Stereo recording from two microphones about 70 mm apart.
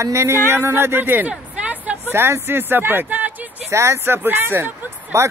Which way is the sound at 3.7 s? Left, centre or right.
Right.